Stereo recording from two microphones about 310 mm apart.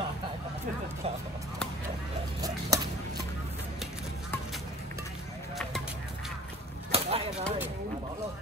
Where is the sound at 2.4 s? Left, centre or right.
Centre.